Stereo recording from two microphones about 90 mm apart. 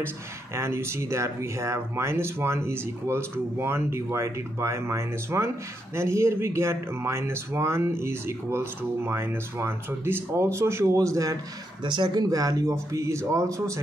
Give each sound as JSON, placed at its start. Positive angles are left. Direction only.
{"t": 0.6, "sound": "speech", "side_deg": -30}
{"t": 11.8, "sound": "speech", "side_deg": -60}